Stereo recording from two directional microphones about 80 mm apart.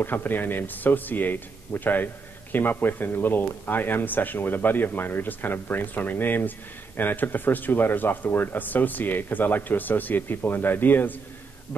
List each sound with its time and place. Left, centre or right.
0.0 s speech: left